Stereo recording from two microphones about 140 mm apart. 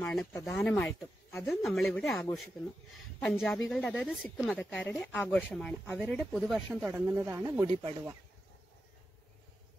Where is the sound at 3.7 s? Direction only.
5° left (ahead or behind).